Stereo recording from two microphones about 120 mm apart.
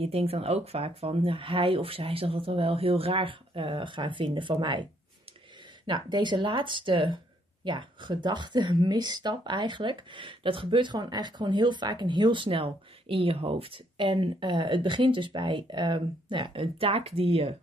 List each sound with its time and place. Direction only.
0.0 s speech: 55° right (ahead or behind); by 4.8 s 40° right (ahead or behind)
5.9 s speech: 35° right (ahead or behind); by 17.6 s 55° right (ahead or behind)